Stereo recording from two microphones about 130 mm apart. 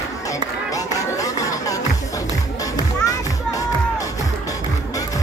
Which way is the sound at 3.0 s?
25° left (ahead or behind).